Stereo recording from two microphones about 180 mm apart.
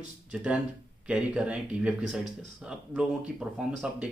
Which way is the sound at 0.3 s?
5° right (ahead or behind).